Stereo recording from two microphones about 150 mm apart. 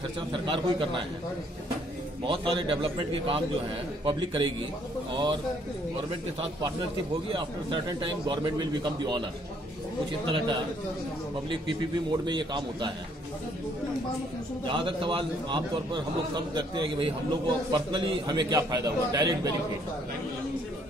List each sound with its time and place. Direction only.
0.3 s a man's voice: 35° right (ahead or behind)
2.2 s a man's voice: 35° right (ahead or behind)
7.2 s a man's voice: 35° right (ahead or behind)
11.6 s a man's voice: 30° right (ahead or behind)
14.7 s a man's voice: 35° right (ahead or behind)